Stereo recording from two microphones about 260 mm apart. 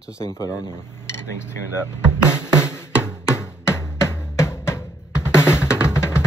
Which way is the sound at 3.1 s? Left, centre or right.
Centre.